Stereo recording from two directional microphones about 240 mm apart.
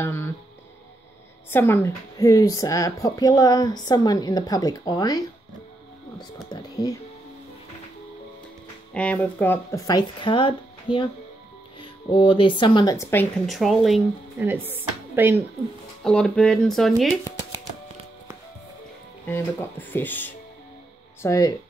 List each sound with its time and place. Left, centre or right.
0.0 s music: centre
1.5 s a woman's voice: centre
8.9 s a woman's voice: centre
16.0 s speech: centre
19.2 s a woman's voice: centre